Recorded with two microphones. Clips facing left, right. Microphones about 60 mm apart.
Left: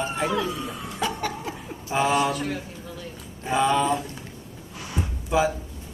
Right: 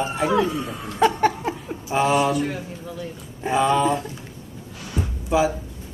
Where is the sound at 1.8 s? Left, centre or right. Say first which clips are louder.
Right 3 dB; centre.